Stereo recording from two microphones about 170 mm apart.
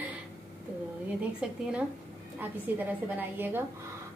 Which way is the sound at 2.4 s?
10° right (ahead or behind).